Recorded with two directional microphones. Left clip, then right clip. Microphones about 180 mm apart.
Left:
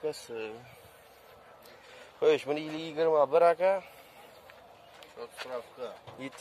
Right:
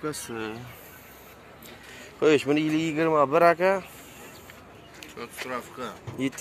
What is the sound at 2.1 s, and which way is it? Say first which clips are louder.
Speech: right 5 dB; 25° left (ahead or behind).